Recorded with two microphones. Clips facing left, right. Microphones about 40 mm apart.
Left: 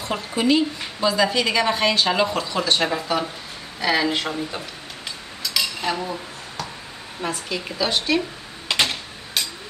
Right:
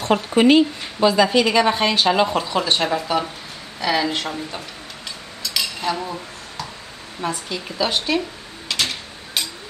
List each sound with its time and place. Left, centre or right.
0.1 s speech: right
0.6 s a woman's voice: right
1.4 s speech: centre
5.4 s cutlery: centre
7.2 s speech: centre
8.6 s a sound: centre